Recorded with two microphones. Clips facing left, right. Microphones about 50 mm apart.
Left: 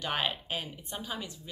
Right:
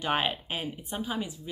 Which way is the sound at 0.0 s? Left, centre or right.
Centre.